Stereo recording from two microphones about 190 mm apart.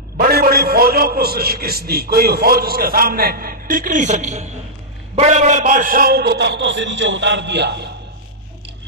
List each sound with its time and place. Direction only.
0.2 s a man's voice: 55° right (ahead or behind)